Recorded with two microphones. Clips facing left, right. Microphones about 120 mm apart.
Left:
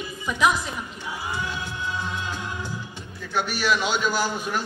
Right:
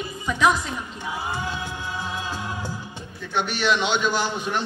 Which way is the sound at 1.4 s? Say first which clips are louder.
Even; 20° right (ahead or behind).